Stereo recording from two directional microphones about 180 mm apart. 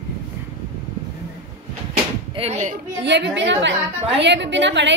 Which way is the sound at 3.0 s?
75° right (ahead or behind).